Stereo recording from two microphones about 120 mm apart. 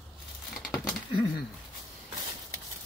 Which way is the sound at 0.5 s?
Centre (ahead or behind).